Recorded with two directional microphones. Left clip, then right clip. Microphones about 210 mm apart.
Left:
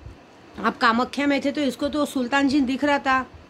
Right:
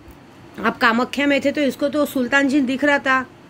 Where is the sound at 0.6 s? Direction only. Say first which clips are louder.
Right 3 dB; 5° left (ahead or behind).